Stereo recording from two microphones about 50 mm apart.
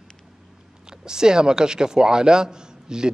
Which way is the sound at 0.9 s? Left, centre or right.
Centre.